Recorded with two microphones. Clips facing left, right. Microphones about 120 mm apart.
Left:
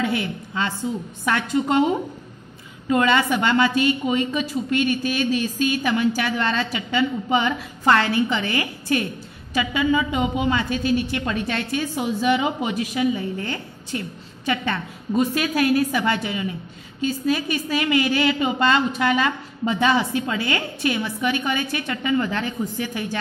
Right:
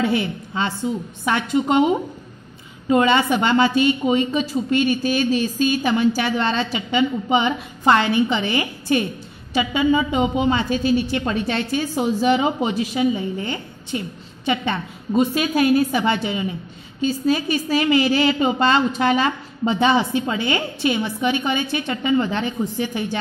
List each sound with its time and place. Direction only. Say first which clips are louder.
0.0 s a woman's voice: right 3 dB; 25° right (ahead or behind)